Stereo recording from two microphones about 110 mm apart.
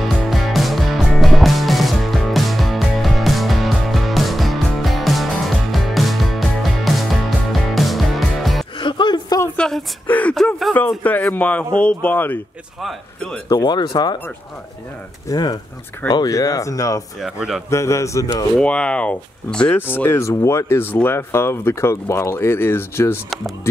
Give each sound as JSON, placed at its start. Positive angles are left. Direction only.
{"t": 0.0, "sound": "music", "side_deg": 0}
{"t": 8.7, "sound": "music", "side_deg": 45}
{"t": 9.6, "sound": "a sound", "side_deg": 5}
{"t": 10.0, "sound": "a sound", "side_deg": 15}
{"t": 10.3, "sound": "a sound", "side_deg": 5}
{"t": 11.1, "sound": "speech", "side_deg": 15}
{"t": 13.5, "sound": "speech", "side_deg": 40}
{"t": 15.2, "sound": "speech", "side_deg": 35}
{"t": 17.2, "sound": "a man's voice", "side_deg": -5}
{"t": 17.6, "sound": "speech", "side_deg": 25}
{"t": 18.6, "sound": "speech", "side_deg": 10}